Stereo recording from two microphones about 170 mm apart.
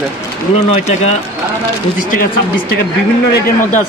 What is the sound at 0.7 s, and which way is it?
Speech, 40° left (ahead or behind).